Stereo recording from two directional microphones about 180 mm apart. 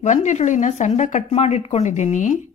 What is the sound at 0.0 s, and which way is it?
A woman's voice, 40° left (ahead or behind).